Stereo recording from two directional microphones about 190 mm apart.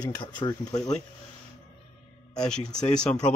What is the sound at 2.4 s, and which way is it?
Speech, 5° left (ahead or behind).